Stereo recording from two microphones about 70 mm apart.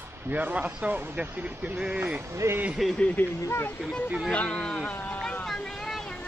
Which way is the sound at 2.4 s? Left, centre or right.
Right.